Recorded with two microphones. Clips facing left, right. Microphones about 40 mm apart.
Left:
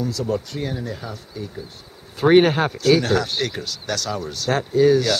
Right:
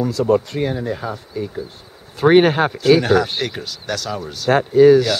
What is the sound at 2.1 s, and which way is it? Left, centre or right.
Speech, centre.